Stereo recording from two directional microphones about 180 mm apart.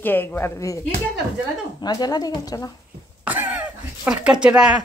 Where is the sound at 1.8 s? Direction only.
20° left (ahead or behind).